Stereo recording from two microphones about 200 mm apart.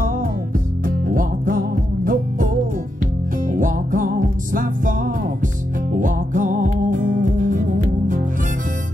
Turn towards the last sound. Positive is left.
turn(degrees=-40)  # may be behind; listen again after turning